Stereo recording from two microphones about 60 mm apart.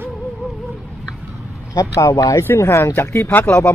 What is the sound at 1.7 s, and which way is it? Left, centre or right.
Speech, left.